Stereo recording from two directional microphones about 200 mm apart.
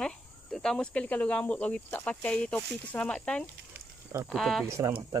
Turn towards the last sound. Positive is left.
turn(degrees=-15)  # may be behind; listen again after turning